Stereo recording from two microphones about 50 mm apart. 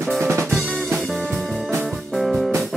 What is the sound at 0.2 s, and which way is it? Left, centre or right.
Drum kit, right.